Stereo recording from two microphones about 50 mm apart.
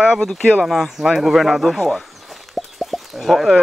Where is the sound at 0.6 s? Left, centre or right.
Centre.